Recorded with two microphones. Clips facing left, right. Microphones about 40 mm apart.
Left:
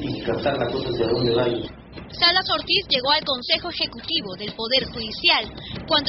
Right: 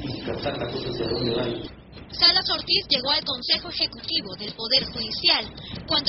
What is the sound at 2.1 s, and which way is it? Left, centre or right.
A woman's voice, left.